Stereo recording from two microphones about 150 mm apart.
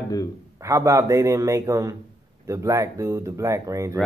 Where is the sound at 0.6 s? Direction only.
20° right (ahead or behind).